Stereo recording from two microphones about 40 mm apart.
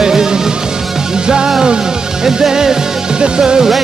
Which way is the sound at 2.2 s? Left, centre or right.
Centre.